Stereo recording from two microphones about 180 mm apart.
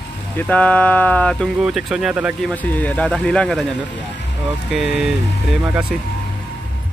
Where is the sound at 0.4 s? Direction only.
10° left (ahead or behind).